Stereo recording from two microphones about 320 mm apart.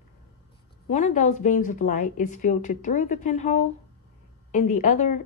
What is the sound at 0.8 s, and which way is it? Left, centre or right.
A woman's voice, left.